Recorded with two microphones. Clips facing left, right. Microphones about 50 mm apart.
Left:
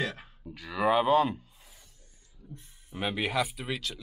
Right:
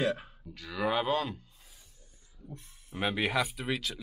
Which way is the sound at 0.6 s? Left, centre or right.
Centre.